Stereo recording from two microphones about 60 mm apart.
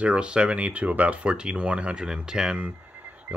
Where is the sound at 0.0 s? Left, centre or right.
Centre.